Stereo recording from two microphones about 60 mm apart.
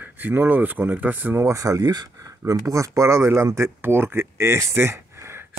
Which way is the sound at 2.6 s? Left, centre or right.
Right.